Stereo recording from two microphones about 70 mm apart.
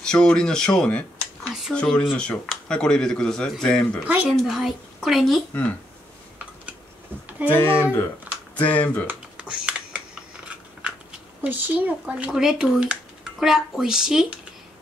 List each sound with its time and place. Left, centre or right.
0.0 s speech: centre
4.0 s speech: right
4.3 s a woman's voice: centre
7.2 s a sound: right
7.5 s speech: left
8.5 s speech: left
9.5 s computer keyboard: centre
11.4 s speech: right
12.4 s speech: centre
12.8 s a sound: centre
13.5 s speech: centre